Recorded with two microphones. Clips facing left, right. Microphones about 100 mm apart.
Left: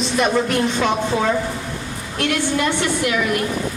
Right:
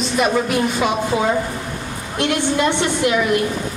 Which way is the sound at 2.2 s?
25° right (ahead or behind).